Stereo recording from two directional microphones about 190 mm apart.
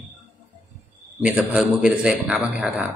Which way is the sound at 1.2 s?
5° right (ahead or behind).